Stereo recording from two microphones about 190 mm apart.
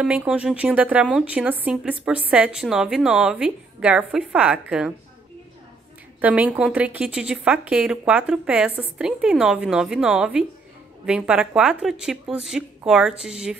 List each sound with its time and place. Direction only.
0.0 s a woman's voice: 5° right (ahead or behind)
6.2 s a woman's voice: 10° right (ahead or behind)